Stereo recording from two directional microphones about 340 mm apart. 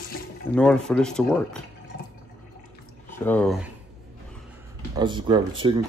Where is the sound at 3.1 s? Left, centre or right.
Centre.